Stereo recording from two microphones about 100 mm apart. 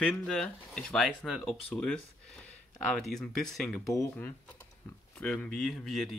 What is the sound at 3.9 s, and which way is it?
Speech, 30° left (ahead or behind).